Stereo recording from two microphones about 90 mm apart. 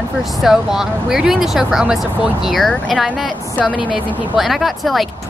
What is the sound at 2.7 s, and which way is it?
Speech, 15° left (ahead or behind).